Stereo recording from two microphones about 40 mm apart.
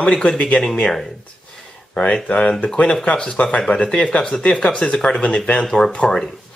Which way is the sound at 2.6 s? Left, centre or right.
Left.